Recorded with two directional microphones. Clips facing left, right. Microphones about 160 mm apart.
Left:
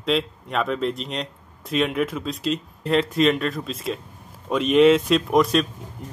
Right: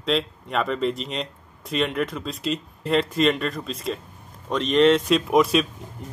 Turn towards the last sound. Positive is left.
turn(degrees=0)  # may be behind; listen again after turning